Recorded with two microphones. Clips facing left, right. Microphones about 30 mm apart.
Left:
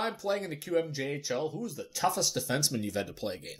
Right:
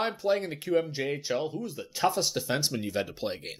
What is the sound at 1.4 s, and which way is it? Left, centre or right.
Speech, right.